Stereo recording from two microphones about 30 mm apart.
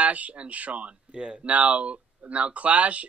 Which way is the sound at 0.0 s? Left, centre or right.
Right.